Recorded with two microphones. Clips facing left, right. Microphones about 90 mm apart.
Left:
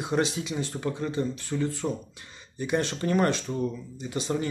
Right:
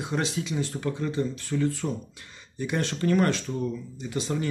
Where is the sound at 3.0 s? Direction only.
20° left (ahead or behind).